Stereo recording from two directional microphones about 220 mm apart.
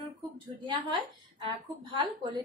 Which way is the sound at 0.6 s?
20° right (ahead or behind).